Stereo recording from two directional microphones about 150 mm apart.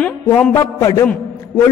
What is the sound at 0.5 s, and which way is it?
Speech, 20° left (ahead or behind).